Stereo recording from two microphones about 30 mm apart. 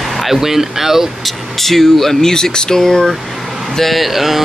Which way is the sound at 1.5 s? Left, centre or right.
Centre.